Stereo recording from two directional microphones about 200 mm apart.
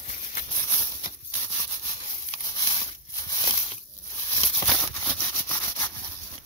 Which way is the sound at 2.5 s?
20° left (ahead or behind).